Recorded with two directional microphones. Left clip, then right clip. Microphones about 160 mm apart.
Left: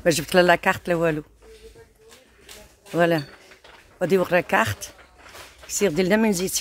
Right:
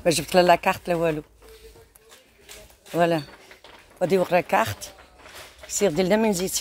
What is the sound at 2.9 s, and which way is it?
Speech, 45° left (ahead or behind).